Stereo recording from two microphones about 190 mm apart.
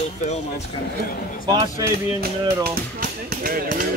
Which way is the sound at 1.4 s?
20° right (ahead or behind).